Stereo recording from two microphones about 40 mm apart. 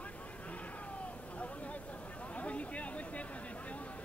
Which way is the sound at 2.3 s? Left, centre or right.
Left.